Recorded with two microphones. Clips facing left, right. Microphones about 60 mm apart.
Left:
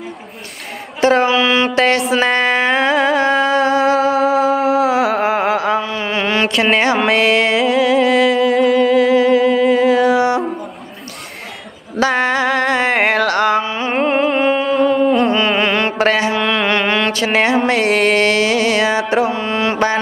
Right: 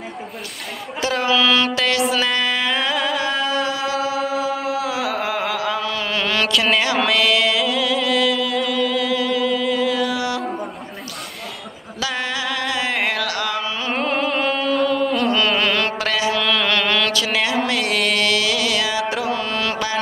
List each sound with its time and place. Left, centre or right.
1.0 s speech: left
1.8 s music: left
2.1 s a sound: left
2.4 s music: left
3.6 s music: left
4.2 s music: left
5.8 s mantra: left
7.1 s music: left
12.1 s singing: left
12.5 s music: left
13.2 s music: left
13.7 s music: left
16.1 s mantra: left
16.3 s music: left